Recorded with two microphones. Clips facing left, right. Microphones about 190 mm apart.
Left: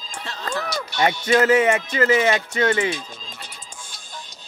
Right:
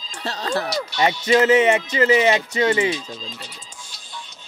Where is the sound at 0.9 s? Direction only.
50° left (ahead or behind).